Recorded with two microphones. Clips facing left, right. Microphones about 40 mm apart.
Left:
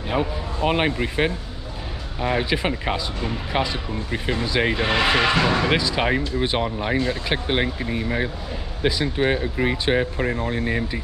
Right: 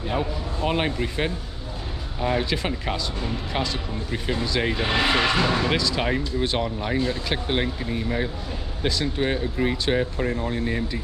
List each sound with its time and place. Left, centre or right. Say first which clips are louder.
0.1 s speech: left 4 dB; centre